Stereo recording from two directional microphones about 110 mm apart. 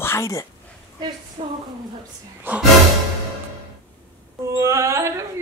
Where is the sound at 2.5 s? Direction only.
15° right (ahead or behind).